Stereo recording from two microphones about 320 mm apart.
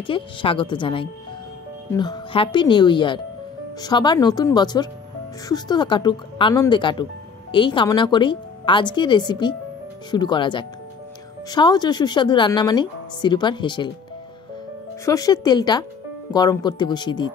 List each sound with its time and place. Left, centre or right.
0.0 s a woman's voice: centre
15.0 s a woman's voice: centre